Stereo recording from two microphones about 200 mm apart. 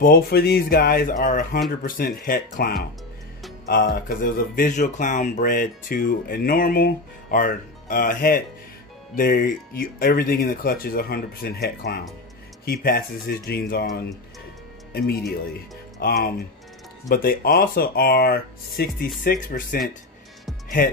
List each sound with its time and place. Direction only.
0.0 s speech: 50° left (ahead or behind)
14.9 s speech: 50° left (ahead or behind)